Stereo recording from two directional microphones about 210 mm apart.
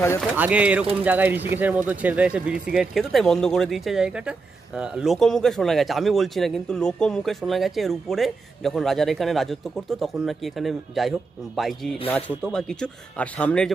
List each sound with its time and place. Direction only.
0.4 s speech: 5° right (ahead or behind)